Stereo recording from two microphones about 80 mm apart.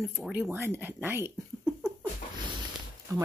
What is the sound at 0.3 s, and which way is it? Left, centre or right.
Speech, right.